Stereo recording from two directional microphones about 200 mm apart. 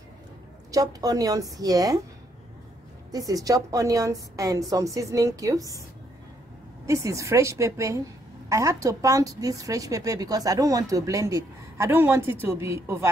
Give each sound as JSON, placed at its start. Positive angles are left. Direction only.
{"t": 0.7, "sound": "a woman's voice", "side_deg": -20}
{"t": 3.1, "sound": "a woman's voice", "side_deg": -20}
{"t": 6.9, "sound": "a woman's voice", "side_deg": -15}